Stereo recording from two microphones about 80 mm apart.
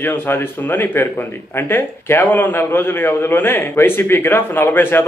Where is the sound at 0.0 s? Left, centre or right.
Left.